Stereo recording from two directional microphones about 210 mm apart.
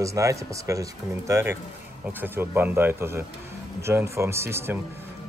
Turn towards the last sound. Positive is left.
turn(degrees=-10)  # may be behind; listen again after turning